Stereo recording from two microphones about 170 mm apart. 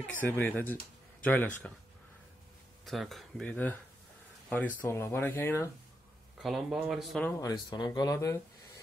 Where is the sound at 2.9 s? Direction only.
Centre (ahead or behind).